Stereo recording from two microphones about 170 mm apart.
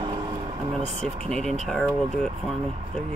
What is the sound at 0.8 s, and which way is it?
Speech, 40° right (ahead or behind).